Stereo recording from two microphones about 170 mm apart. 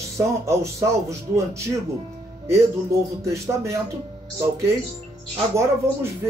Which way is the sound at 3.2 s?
15° right (ahead or behind).